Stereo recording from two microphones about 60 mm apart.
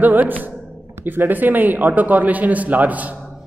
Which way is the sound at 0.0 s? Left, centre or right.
Right.